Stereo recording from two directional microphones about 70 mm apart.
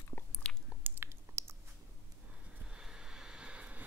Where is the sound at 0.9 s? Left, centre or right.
Right.